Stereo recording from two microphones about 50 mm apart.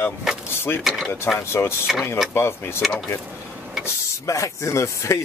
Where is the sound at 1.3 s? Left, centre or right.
Left.